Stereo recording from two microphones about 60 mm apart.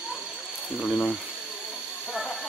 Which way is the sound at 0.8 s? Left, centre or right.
Centre.